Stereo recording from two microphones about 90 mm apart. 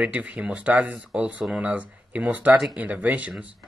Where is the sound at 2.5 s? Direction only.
5° right (ahead or behind).